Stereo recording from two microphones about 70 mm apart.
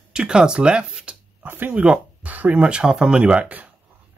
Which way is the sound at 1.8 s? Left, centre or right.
Right.